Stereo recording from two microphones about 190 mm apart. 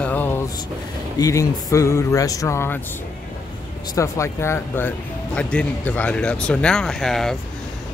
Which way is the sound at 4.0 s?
15° left (ahead or behind).